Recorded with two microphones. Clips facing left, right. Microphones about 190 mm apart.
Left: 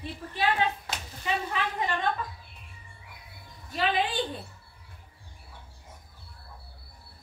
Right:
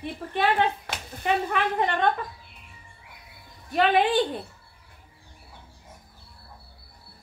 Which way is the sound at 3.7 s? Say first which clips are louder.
Right 7 dB; 60° right (ahead or behind).